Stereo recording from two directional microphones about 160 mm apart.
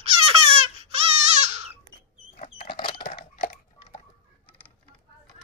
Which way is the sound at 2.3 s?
40° left (ahead or behind).